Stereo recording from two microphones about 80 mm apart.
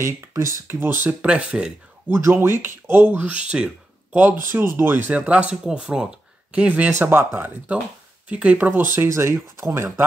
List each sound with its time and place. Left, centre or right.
0.0 s speech: right
0.7 s speech: right
1.2 s speech: centre
2.0 s speech: right; by 4.2 s centre
4.2 s speech: right